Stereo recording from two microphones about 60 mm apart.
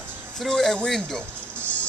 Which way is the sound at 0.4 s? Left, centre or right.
Centre.